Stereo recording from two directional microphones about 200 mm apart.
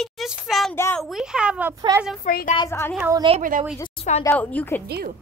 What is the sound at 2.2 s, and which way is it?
Speech, 40° left (ahead or behind).